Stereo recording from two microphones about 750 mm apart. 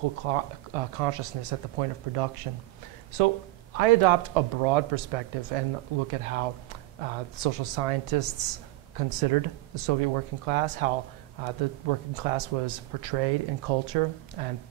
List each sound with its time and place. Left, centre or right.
0.2 s speech: right
3.7 s speech: right